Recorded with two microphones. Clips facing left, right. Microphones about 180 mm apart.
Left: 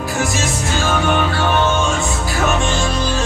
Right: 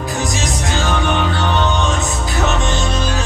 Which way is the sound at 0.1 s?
20° right (ahead or behind).